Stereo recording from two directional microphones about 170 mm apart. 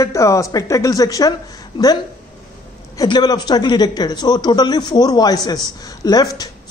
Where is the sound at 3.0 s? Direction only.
25° left (ahead or behind).